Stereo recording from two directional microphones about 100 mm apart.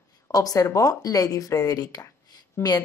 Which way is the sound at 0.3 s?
35° left (ahead or behind).